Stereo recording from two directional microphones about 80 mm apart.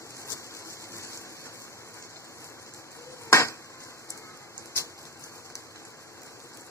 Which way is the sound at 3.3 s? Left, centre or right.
Left.